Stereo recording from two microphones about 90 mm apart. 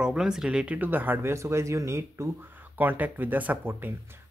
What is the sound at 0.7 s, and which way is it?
Speech, 20° right (ahead or behind).